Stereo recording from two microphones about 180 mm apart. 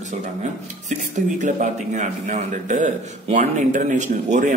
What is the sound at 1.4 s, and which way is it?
A man's voice, 40° right (ahead or behind).